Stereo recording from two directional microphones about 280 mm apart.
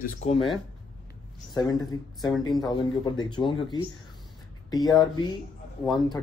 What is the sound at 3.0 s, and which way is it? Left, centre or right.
Speech, centre.